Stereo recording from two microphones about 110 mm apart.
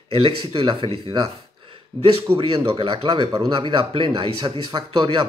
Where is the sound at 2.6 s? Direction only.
50° right (ahead or behind).